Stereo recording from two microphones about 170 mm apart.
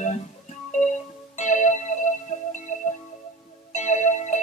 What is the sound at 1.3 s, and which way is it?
Music, 45° left (ahead or behind).